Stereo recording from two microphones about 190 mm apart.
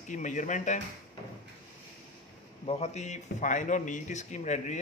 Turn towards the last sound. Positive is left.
turn(degrees=40)  # may be behind; listen again after turning